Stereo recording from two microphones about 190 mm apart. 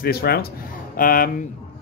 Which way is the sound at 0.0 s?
55° left (ahead or behind).